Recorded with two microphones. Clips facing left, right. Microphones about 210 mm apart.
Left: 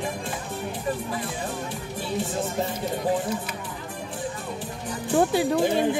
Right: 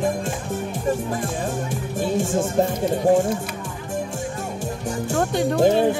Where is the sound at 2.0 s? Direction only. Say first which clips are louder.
Right 7 dB; 45° right (ahead or behind).